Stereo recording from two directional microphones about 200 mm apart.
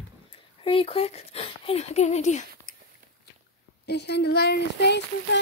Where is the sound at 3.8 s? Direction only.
55° left (ahead or behind).